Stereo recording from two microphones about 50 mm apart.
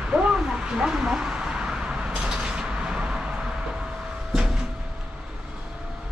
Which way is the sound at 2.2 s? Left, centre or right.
Centre.